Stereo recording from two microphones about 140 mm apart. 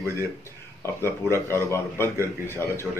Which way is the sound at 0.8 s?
20° left (ahead or behind).